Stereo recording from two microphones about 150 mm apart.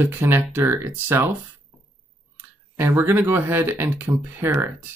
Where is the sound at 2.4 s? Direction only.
15° right (ahead or behind).